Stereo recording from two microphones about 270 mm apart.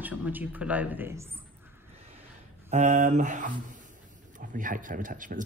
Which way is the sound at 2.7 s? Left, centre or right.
Right.